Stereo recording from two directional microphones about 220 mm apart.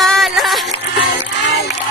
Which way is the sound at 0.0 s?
Centre (ahead or behind).